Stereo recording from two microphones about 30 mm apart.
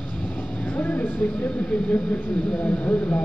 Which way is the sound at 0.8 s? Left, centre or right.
Left.